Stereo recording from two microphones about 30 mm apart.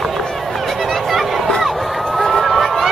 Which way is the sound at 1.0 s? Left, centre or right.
Centre.